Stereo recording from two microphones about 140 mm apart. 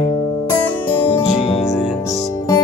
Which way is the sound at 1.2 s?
50° left (ahead or behind).